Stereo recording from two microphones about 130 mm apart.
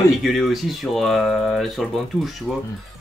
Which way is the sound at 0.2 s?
Centre (ahead or behind).